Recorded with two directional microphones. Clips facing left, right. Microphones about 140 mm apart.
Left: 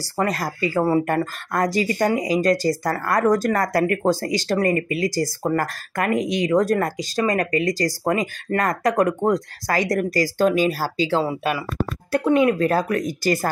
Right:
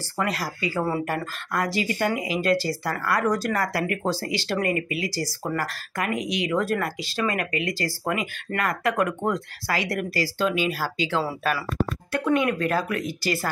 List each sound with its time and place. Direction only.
0.0 s speech: 40° left (ahead or behind)